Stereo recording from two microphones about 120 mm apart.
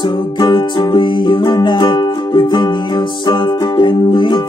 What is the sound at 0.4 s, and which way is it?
Music, 40° left (ahead or behind).